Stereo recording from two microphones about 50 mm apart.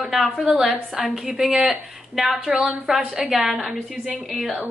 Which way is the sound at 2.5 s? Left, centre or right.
Right.